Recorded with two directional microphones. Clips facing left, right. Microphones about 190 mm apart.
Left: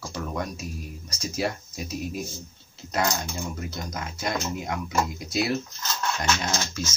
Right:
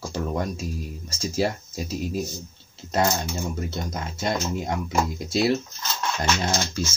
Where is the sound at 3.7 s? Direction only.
25° right (ahead or behind).